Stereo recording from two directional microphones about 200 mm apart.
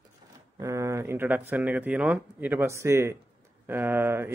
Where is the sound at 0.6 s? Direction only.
15° right (ahead or behind).